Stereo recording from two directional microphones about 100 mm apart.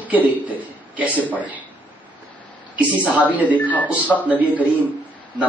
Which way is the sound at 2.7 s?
15° right (ahead or behind).